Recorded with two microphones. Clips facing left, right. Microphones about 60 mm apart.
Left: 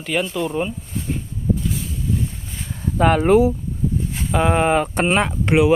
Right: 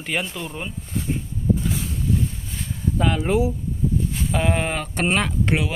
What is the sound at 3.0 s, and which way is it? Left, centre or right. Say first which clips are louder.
Speech: left 8 dB; left.